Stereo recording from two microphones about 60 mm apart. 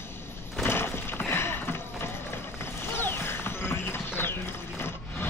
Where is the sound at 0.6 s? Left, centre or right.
Left.